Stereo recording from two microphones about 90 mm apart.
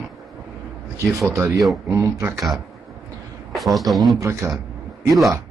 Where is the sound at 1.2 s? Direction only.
35° right (ahead or behind).